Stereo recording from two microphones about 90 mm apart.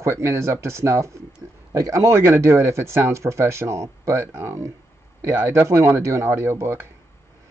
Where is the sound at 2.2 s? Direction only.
25° right (ahead or behind).